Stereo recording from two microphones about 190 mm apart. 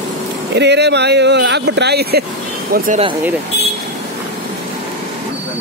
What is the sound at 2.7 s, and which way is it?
Speech, 50° right (ahead or behind).